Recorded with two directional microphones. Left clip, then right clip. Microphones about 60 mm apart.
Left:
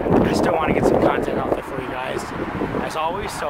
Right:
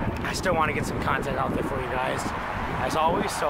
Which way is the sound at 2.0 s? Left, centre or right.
Centre.